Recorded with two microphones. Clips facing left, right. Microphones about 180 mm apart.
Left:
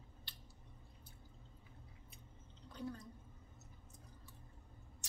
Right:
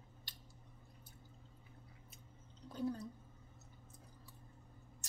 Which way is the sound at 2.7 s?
40° right (ahead or behind).